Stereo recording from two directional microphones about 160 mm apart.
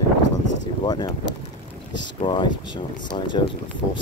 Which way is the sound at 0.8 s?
25° left (ahead or behind).